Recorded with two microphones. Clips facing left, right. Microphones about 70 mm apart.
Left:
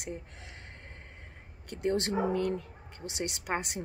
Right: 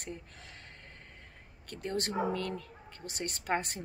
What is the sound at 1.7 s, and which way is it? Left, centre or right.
Speech, left.